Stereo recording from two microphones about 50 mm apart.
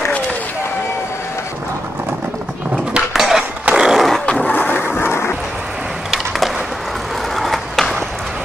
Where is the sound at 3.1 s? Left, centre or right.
Centre.